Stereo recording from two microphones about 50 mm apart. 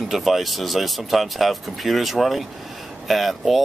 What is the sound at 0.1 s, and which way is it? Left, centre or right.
Speech, centre.